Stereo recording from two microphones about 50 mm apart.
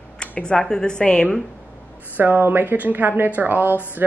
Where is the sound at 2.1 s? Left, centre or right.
Right.